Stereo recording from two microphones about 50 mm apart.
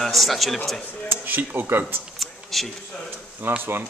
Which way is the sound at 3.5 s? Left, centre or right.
Right.